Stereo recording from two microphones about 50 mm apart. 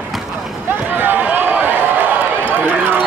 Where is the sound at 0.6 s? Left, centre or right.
Right.